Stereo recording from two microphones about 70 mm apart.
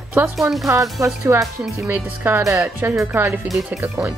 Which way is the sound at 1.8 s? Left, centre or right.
Right.